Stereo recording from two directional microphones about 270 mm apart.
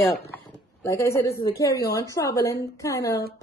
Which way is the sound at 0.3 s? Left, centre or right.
Centre.